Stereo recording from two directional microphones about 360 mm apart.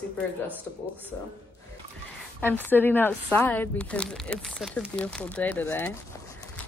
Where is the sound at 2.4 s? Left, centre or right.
Centre.